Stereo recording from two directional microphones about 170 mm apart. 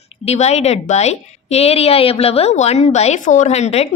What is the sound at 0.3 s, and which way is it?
A woman's voice, 40° left (ahead or behind).